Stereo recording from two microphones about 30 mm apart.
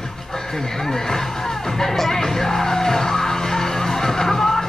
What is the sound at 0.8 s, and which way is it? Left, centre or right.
Music, centre.